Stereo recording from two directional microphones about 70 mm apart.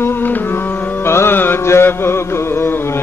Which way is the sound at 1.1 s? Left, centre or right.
Left.